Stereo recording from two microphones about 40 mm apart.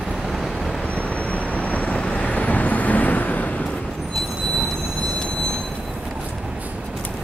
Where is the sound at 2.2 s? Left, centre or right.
Left.